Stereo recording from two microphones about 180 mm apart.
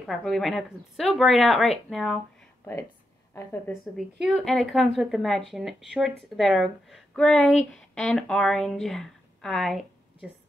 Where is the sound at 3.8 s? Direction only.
Centre (ahead or behind).